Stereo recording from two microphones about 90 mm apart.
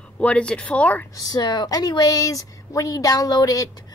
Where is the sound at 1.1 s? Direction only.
45° left (ahead or behind).